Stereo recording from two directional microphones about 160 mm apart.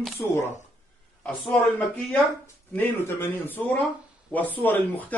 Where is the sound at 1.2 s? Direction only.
5° left (ahead or behind).